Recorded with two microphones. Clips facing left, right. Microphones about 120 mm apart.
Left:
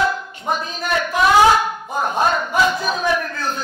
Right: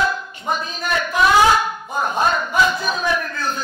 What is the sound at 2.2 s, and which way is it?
Speech, 50° left (ahead or behind).